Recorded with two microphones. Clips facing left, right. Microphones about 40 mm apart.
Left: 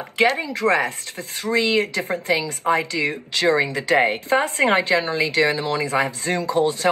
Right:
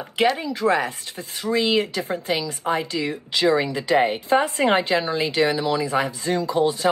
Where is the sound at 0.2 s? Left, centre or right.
Left.